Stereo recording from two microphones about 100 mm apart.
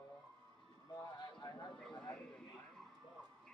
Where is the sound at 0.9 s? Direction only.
45° left (ahead or behind).